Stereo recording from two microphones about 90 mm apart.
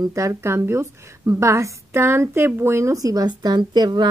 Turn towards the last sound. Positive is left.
turn(degrees=-55)  # may be behind; listen again after turning